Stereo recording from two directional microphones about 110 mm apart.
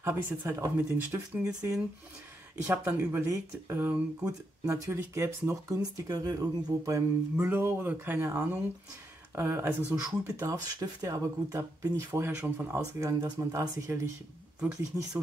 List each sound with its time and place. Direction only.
0.0 s speech: 25° right (ahead or behind)
1.4 s speech: 30° right (ahead or behind)
2.5 s speech: 20° right (ahead or behind)
3.3 s speech: 30° right (ahead or behind)
3.7 s speech: 20° right (ahead or behind)
7.3 s speech: 20° right (ahead or behind)
10.4 s speech: 30° right (ahead or behind)
14.9 s speech: 30° right (ahead or behind)